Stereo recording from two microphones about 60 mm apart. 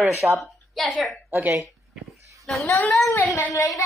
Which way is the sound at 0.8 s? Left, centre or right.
Centre.